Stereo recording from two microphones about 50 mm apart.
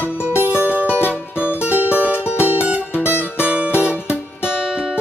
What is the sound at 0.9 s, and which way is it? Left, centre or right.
Music, right.